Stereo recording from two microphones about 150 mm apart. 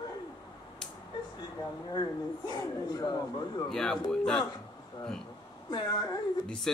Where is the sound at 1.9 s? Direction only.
30° left (ahead or behind).